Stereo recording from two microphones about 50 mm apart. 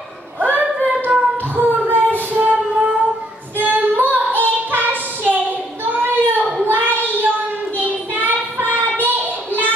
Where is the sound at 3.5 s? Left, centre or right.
Right.